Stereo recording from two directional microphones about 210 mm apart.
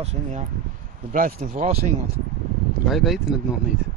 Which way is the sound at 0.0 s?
35° right (ahead or behind).